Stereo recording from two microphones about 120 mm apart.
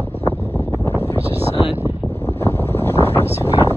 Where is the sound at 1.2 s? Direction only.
55° right (ahead or behind).